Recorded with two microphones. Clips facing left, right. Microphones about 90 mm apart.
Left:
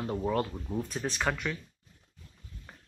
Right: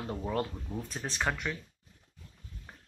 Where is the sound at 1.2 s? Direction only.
10° right (ahead or behind).